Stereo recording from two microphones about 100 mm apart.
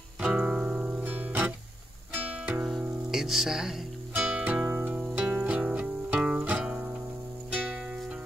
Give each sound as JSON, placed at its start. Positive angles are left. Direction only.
{"t": 0.2, "sound": "music", "side_deg": -10}
{"t": 4.1, "sound": "music", "side_deg": -15}
{"t": 4.9, "sound": "music", "side_deg": -10}